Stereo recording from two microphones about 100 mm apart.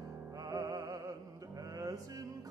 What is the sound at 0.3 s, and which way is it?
Music, 35° right (ahead or behind).